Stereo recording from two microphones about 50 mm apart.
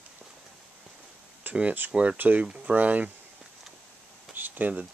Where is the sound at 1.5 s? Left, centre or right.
Right.